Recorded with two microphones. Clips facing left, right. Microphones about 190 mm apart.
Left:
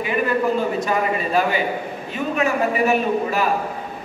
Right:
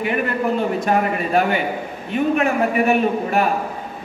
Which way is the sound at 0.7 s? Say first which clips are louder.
Right 2 dB; 60° right (ahead or behind).